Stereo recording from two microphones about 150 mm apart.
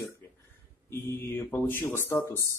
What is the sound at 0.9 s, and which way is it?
Speech, 15° left (ahead or behind).